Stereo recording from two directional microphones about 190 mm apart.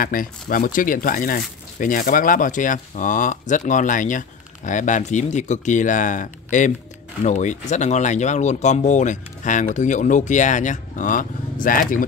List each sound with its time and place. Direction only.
0.0 s speech: 45° left (ahead or behind)